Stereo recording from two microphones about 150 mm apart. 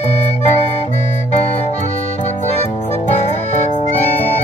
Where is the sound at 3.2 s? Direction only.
45° left (ahead or behind).